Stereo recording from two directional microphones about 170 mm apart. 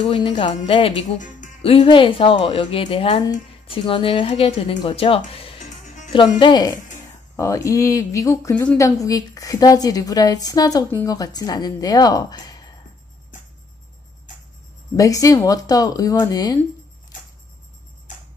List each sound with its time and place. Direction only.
0.0 s speech: 30° left (ahead or behind)
5.9 s music: 45° left (ahead or behind)
6.1 s a woman's voice: 25° left (ahead or behind)
15.0 s a woman's voice: 20° left (ahead or behind)